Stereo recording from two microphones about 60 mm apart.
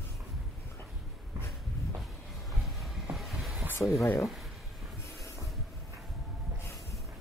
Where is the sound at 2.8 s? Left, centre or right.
Centre.